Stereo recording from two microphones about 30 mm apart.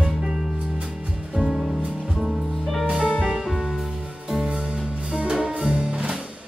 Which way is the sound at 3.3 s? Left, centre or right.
Centre.